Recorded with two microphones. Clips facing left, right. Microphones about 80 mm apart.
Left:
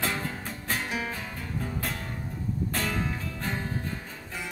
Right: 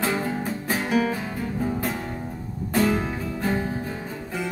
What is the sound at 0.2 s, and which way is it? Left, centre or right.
Music, centre.